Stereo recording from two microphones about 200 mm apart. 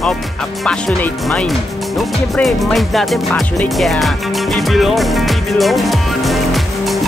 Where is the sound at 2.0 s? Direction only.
Centre (ahead or behind).